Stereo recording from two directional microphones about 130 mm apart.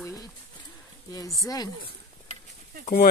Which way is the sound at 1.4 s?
30° left (ahead or behind).